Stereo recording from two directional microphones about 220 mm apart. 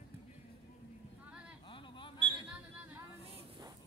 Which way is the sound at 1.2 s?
5° right (ahead or behind).